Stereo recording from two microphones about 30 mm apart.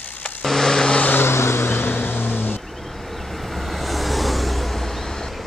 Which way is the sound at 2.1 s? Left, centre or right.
Left.